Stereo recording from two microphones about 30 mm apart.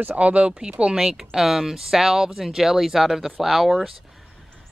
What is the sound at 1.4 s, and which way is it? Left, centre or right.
Speech, centre.